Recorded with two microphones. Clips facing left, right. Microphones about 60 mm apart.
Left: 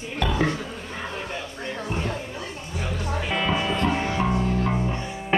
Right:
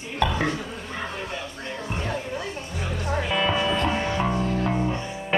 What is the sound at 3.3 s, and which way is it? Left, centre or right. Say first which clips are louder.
Music: right 1 dB; centre.